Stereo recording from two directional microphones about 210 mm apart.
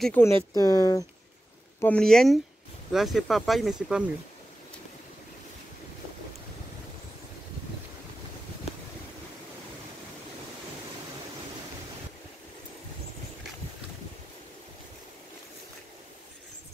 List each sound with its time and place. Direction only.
0.0 s speech: 10° left (ahead or behind)
1.8 s speech: 5° left (ahead or behind)